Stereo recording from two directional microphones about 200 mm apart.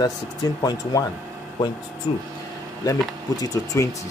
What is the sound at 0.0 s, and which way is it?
Speech, 20° left (ahead or behind).